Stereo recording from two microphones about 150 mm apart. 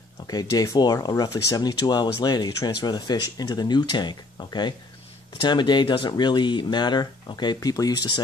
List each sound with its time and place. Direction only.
0.3 s speech: 25° left (ahead or behind)